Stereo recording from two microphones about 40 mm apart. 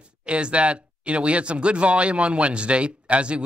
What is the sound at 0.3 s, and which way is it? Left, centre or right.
A man's voice, right.